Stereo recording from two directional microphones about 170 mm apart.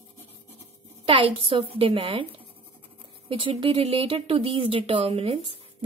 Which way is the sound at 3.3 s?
30° right (ahead or behind).